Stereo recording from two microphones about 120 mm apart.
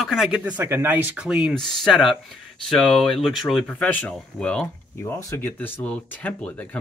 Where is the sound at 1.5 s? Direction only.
5° left (ahead or behind).